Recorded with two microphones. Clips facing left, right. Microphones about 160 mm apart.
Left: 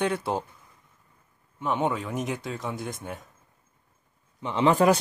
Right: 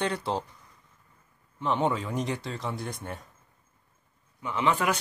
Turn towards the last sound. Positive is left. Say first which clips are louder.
# left 6 dB
turn(degrees=35)  # may be behind; listen again after turning